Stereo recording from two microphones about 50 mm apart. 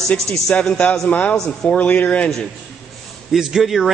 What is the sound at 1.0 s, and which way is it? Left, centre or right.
Speech, left.